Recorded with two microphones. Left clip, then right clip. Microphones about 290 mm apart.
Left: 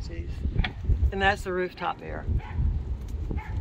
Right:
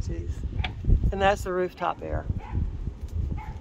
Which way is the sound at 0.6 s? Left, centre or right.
Right.